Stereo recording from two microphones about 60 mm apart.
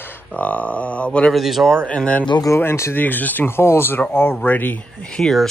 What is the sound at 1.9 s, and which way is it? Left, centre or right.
Speech, left.